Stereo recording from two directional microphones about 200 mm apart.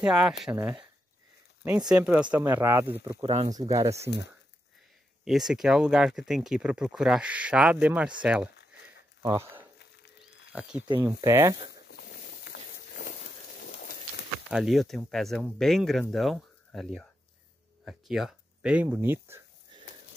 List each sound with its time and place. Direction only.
0.0 s speech: 5° right (ahead or behind)
1.9 s speech: 5° right (ahead or behind)
5.2 s speech: centre (ahead or behind)
9.8 s a sound: 55° left (ahead or behind)
10.9 s speech: 20° right (ahead or behind)
11.7 s a sound: 50° left (ahead or behind)
13.6 s pigeon: 45° left (ahead or behind)
14.5 s speech: centre (ahead or behind)